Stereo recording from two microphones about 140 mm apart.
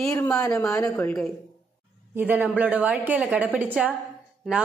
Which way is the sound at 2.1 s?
15° right (ahead or behind).